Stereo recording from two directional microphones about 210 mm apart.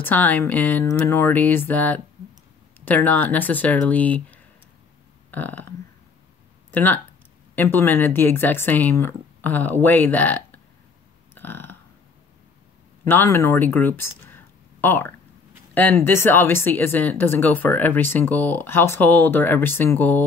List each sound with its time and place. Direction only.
0.0 s speech: 10° left (ahead or behind)
6.7 s speech: 10° left (ahead or behind)
11.3 s burping: 10° left (ahead or behind)
13.0 s speech: 10° left (ahead or behind)